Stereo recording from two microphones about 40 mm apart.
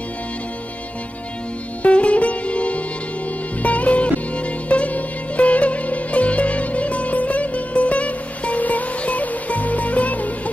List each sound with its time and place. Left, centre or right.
1.8 s music: left